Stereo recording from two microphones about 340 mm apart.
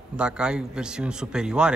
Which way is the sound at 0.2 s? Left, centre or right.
Centre.